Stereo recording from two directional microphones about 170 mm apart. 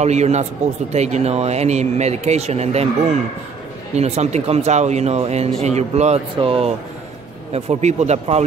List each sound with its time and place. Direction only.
0.0 s speech: 40° right (ahead or behind)
3.9 s speech: 40° right (ahead or behind)